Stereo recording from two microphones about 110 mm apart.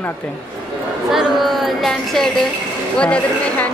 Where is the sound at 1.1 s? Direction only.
Centre (ahead or behind).